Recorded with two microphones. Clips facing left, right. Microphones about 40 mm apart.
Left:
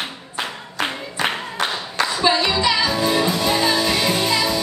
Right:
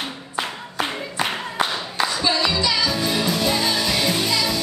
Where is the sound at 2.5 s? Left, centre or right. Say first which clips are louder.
Left 3 dB; left.